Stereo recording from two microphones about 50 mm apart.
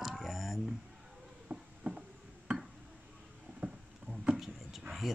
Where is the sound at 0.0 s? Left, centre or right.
Centre.